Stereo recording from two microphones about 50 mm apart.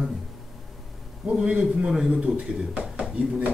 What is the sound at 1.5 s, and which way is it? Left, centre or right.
Speech, centre.